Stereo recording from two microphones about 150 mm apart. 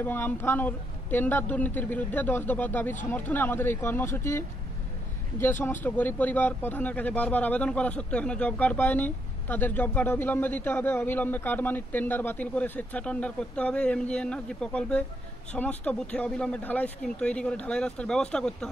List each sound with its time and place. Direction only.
0.0 s speech: 15° left (ahead or behind)